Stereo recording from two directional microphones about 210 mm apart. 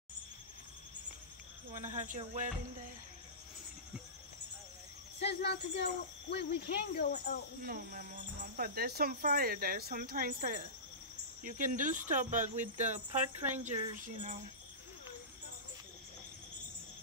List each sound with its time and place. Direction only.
1.7 s speech: 35° right (ahead or behind)
5.2 s speech: 50° left (ahead or behind)
7.6 s speech: 45° right (ahead or behind)